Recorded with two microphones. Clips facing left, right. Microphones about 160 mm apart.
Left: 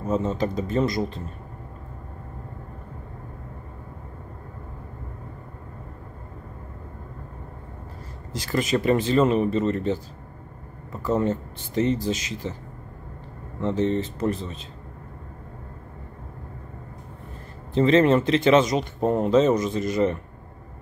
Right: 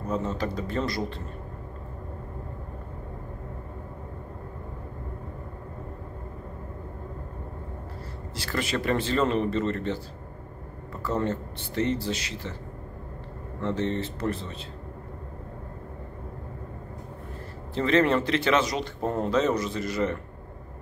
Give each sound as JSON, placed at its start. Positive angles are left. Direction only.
{"t": 0.1, "sound": "speech", "side_deg": 20}
{"t": 8.3, "sound": "speech", "side_deg": 15}
{"t": 13.6, "sound": "speech", "side_deg": 15}
{"t": 17.7, "sound": "speech", "side_deg": 20}